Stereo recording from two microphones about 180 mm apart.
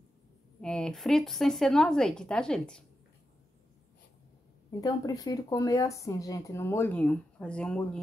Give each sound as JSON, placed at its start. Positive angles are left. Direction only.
{"t": 0.6, "sound": "speech", "side_deg": 5}
{"t": 4.6, "sound": "speech", "side_deg": 20}